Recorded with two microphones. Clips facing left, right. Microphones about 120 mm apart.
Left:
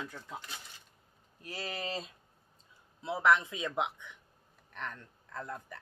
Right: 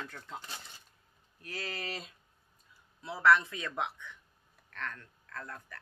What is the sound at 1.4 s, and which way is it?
Speech, 25° left (ahead or behind).